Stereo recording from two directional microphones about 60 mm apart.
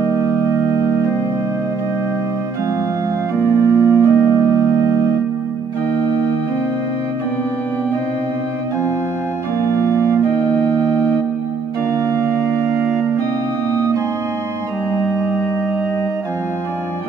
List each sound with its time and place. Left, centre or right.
0.0 s music: right
3.3 s music: right
9.8 s music: right